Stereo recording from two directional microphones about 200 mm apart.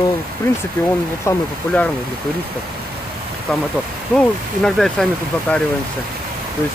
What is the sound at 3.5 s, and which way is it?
Speech, 5° left (ahead or behind).